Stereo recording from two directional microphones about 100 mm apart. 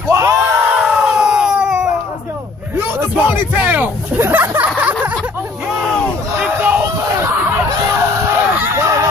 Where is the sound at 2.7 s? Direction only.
25° right (ahead or behind).